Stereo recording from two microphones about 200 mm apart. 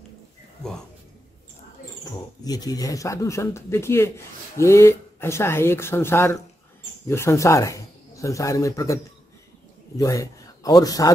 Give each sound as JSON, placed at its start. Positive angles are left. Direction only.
{"t": 2.4, "sound": "a man's voice", "side_deg": 20}